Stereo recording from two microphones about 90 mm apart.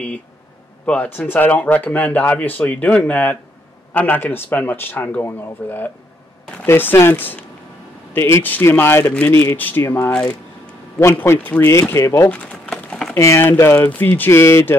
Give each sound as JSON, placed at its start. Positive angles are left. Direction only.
{"t": 0.8, "sound": "speech", "side_deg": 20}
{"t": 11.1, "sound": "speech", "side_deg": 20}
{"t": 12.0, "sound": "speech", "side_deg": 35}